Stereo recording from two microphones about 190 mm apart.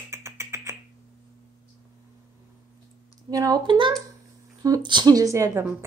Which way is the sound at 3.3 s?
20° right (ahead or behind).